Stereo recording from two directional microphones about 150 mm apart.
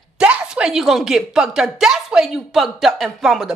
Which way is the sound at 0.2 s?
5° right (ahead or behind).